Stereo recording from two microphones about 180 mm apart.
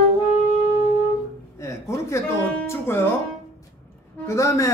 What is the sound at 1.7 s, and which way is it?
Speech, 15° left (ahead or behind).